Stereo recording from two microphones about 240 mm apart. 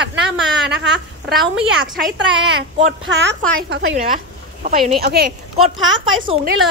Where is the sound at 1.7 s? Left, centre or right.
Centre.